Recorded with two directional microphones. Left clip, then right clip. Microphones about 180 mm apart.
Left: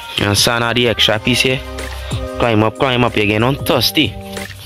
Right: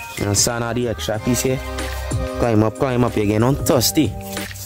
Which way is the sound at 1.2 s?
5° right (ahead or behind).